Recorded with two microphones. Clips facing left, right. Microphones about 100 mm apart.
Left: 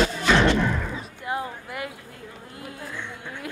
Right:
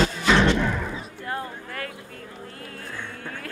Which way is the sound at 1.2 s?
15° left (ahead or behind).